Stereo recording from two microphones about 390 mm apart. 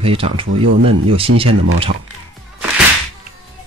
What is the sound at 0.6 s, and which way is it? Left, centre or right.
Speech, right.